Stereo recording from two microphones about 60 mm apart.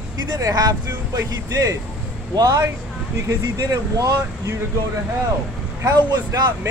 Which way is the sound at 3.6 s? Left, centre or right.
Right.